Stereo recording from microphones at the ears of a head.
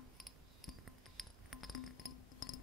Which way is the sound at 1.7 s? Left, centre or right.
Left.